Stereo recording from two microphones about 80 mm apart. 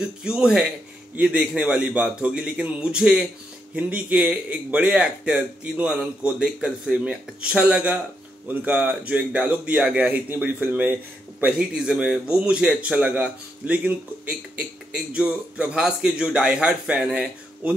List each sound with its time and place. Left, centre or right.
0.2 s a man's voice: centre
11.5 s a man's voice: centre